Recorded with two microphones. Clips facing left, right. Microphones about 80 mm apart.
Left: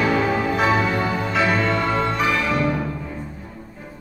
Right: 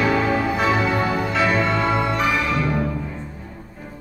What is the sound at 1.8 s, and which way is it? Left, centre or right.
Music, centre.